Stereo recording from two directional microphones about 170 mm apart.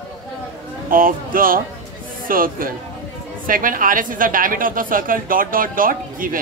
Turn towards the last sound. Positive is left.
turn(degrees=-55)  # may be behind; listen again after turning